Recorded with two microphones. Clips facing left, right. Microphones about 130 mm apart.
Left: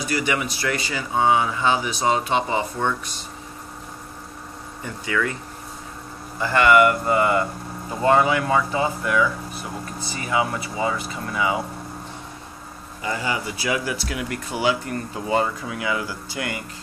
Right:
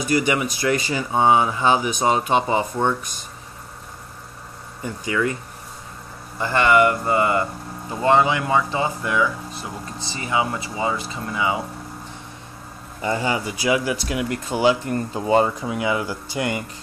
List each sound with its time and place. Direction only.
0.1 s speech: 20° right (ahead or behind)
4.8 s speech: 20° right (ahead or behind)
6.4 s speech: 25° right (ahead or behind)
13.0 s speech: 30° right (ahead or behind)